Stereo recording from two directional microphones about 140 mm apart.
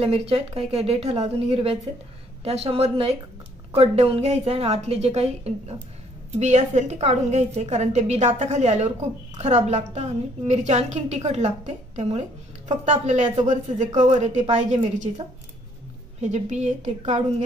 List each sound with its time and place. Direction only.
0.0 s a woman's voice: 45° right (ahead or behind)
16.2 s a woman's voice: 55° right (ahead or behind)